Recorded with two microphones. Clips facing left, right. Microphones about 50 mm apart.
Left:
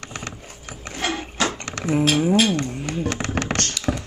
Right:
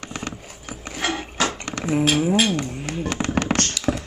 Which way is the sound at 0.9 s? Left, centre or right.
Centre.